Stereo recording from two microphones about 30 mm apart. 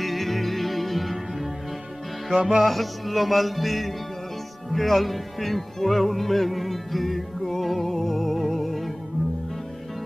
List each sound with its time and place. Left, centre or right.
0.0 s music: centre
2.3 s music: centre
2.6 s music: centre